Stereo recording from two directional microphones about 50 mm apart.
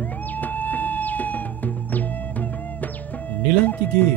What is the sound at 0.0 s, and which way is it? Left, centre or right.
Music, left.